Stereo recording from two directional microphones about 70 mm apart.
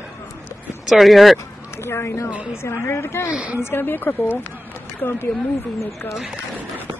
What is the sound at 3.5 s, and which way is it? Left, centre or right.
Speech, left.